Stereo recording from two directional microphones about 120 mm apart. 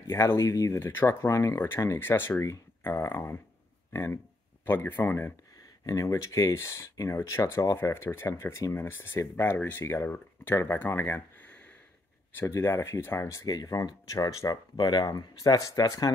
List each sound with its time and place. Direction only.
0.0 s speech: 20° left (ahead or behind)